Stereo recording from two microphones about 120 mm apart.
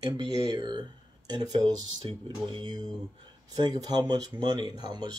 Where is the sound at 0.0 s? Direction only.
35° right (ahead or behind).